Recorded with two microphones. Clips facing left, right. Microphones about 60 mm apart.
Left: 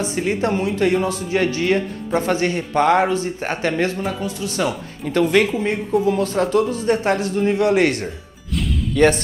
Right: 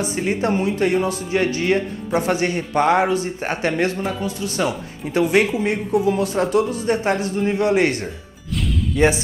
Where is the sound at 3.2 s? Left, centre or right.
Right.